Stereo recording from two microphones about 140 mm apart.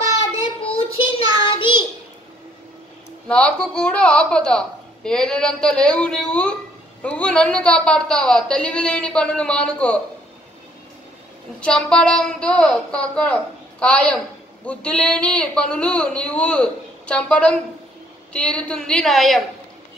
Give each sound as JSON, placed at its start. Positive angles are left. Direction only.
{"t": 1.4, "sound": "child singing", "side_deg": 35}
{"t": 3.3, "sound": "a woman's voice", "side_deg": 5}
{"t": 11.6, "sound": "a woman's voice", "side_deg": 5}